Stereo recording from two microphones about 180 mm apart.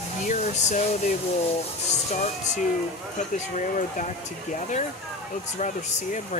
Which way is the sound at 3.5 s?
45° left (ahead or behind).